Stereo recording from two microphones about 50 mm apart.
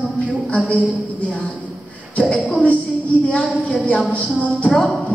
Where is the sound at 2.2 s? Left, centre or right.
Left.